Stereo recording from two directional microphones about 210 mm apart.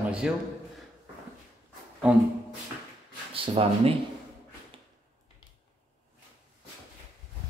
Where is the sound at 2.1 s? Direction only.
5° right (ahead or behind).